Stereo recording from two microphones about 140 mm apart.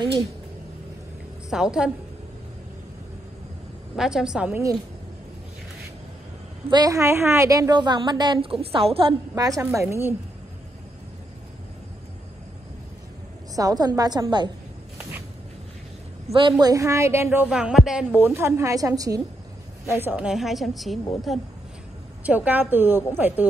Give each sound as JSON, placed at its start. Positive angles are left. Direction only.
{"t": 1.5, "sound": "a woman's voice", "side_deg": -5}
{"t": 3.9, "sound": "a woman's voice", "side_deg": -5}
{"t": 6.7, "sound": "a woman's voice", "side_deg": -25}
{"t": 9.3, "sound": "a woman's voice", "side_deg": -25}
{"t": 13.6, "sound": "a woman's voice", "side_deg": -25}
{"t": 16.3, "sound": "a woman's voice", "side_deg": -35}
{"t": 17.5, "sound": "a woman's voice", "side_deg": -5}
{"t": 22.2, "sound": "a woman's voice", "side_deg": -10}